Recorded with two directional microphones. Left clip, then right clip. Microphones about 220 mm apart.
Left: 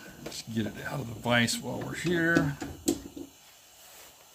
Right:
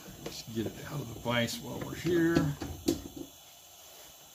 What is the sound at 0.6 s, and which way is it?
Mantra, 45° left (ahead or behind).